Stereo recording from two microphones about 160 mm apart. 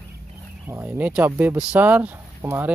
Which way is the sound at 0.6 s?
10° right (ahead or behind).